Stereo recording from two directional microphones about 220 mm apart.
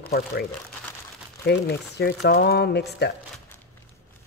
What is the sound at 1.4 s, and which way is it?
Speech, 50° left (ahead or behind).